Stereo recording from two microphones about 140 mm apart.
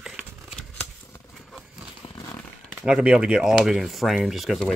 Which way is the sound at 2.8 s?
5° right (ahead or behind).